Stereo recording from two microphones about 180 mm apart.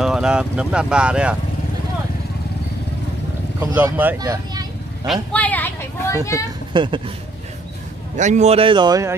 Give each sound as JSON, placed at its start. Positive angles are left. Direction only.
{"t": 0.0, "sound": "speech", "side_deg": -5}
{"t": 3.5, "sound": "speech", "side_deg": -10}
{"t": 4.2, "sound": "speech", "side_deg": -20}
{"t": 5.0, "sound": "a woman's voice", "side_deg": 5}
{"t": 6.7, "sound": "speech", "side_deg": -25}
{"t": 8.2, "sound": "speech", "side_deg": -40}